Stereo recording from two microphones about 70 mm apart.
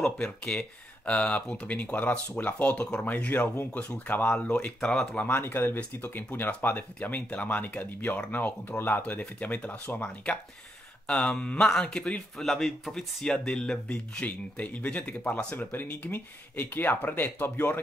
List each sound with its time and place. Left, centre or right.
0.0 s speech: centre
5.2 s speech: left